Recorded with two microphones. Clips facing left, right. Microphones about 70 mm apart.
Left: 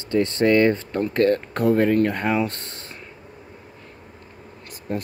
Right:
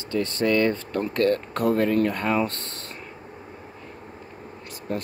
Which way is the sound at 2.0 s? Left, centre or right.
Centre.